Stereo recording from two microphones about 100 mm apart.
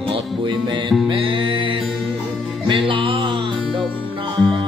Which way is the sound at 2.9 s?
60° right (ahead or behind).